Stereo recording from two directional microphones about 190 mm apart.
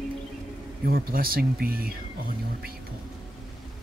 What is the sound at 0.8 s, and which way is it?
Speech, 50° right (ahead or behind).